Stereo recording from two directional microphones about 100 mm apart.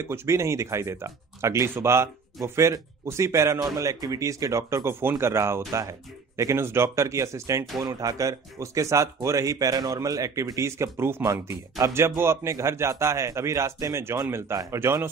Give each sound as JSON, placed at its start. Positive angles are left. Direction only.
{"t": 0.0, "sound": "a man's voice", "side_deg": -25}